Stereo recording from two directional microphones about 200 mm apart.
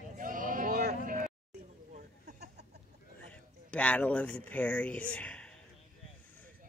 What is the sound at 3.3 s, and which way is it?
Speech, 5° left (ahead or behind).